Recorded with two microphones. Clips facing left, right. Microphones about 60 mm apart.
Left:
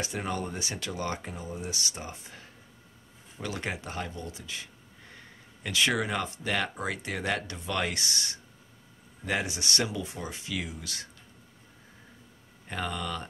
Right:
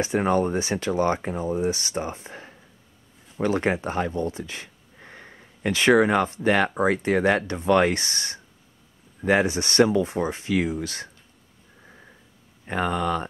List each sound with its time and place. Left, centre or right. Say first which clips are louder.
0.0 s speech: right 11 dB; right
12.6 s speech: right 9 dB; right